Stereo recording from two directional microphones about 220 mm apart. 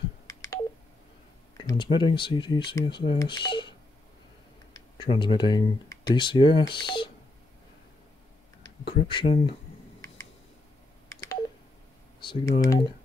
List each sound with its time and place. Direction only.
0.3 s telephone dialing: 15° left (ahead or behind)
1.6 s speech: 20° left (ahead or behind)
4.7 s speech: 25° left (ahead or behind)
8.6 s speech: 25° left (ahead or behind)
11.1 s telephone dialing: 15° left (ahead or behind)
12.2 s speech: 20° left (ahead or behind)